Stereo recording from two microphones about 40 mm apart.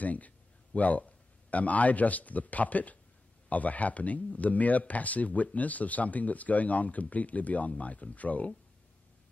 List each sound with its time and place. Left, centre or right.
0.0 s speech: left